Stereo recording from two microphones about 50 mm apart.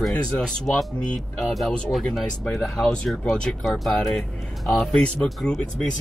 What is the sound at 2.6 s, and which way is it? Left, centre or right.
Speech, centre.